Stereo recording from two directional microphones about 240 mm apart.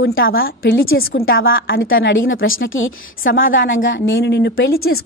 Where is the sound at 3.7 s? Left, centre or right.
Left.